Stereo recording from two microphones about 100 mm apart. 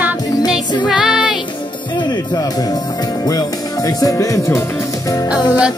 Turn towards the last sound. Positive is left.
turn(degrees=45)  # may be behind; listen again after turning